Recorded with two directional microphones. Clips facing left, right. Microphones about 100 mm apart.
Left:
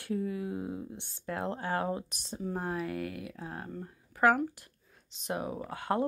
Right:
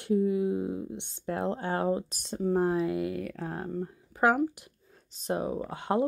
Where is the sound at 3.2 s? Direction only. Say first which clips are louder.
Right 6 dB; 50° right (ahead or behind).